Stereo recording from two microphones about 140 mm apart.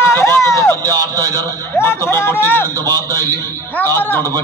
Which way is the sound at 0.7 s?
25° right (ahead or behind).